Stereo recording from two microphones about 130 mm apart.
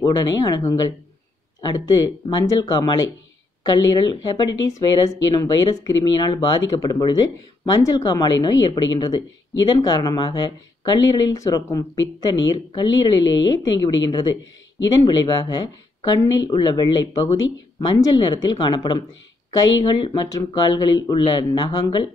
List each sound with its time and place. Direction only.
0.0 s a woman's voice: 30° left (ahead or behind)